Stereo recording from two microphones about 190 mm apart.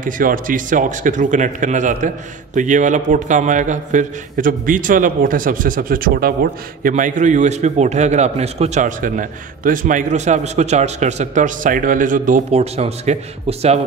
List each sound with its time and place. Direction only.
0.0 s speech: 45° right (ahead or behind)